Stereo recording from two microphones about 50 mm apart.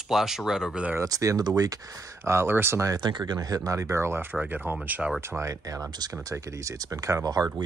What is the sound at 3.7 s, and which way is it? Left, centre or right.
Speech, right.